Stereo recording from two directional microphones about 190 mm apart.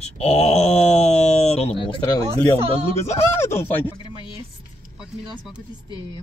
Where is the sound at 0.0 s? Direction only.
35° left (ahead or behind).